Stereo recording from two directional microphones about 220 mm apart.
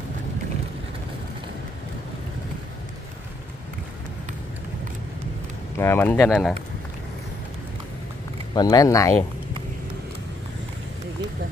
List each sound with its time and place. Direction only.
5.8 s speech: 10° left (ahead or behind)
8.5 s speech: 15° left (ahead or behind)